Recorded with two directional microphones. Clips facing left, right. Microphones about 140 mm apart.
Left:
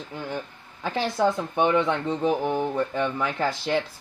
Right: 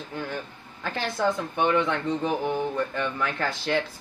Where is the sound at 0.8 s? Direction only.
15° left (ahead or behind).